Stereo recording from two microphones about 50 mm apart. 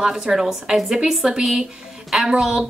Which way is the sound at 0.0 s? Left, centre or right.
Centre.